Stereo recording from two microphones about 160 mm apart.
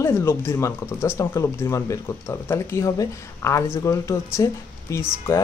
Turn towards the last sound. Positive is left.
turn(degrees=20)  # may be behind; listen again after turning